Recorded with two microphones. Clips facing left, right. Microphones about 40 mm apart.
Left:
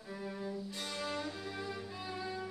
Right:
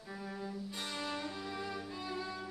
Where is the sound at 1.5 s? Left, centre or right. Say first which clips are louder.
Right 1 dB; centre.